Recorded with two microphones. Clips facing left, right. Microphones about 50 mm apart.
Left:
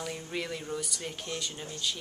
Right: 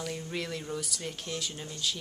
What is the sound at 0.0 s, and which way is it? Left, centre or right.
Speech, centre.